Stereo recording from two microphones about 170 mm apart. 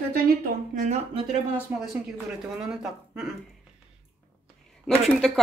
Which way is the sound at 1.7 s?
10° right (ahead or behind).